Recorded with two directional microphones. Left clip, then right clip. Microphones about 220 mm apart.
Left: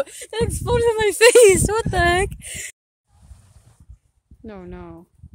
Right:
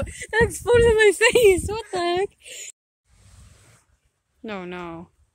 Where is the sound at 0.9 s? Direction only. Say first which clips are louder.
Right 2 dB; 25° left (ahead or behind).